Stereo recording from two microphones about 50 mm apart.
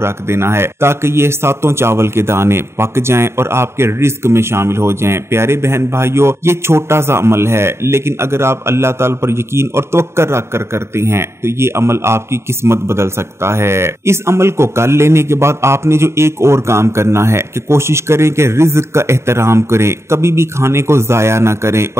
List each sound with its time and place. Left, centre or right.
0.0 s speech: right